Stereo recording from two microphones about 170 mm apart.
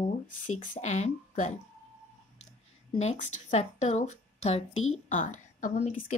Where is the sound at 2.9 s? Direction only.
40° left (ahead or behind).